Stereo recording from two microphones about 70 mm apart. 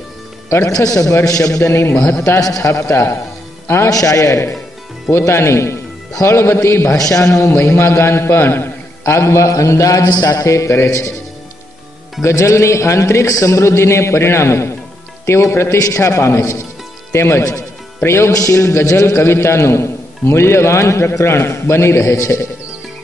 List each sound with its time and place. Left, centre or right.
0.5 s a man's voice: left
0.7 s a man's voice: left
2.0 s a man's voice: centre
2.2 s a man's voice: left
3.9 s a man's voice: left
7.0 s a man's voice: left
7.4 s a man's voice: left
10.0 s music: left
10.4 s a man's voice: left
12.2 s a man's voice: left
18.3 s a man's voice: left